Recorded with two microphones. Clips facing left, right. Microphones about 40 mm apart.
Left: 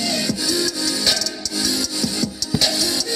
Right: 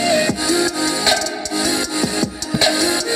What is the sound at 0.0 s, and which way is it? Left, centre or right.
Music, right.